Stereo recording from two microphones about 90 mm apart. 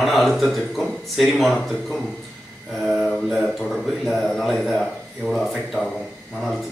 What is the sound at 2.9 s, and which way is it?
A man's voice, 5° left (ahead or behind).